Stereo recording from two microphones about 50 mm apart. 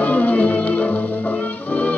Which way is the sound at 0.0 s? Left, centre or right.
Left.